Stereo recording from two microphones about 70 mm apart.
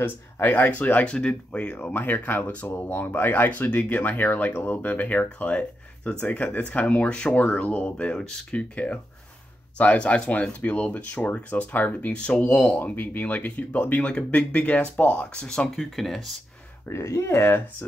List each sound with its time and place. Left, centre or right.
0.0 s speech: left; by 16.3 s centre
16.8 s speech: left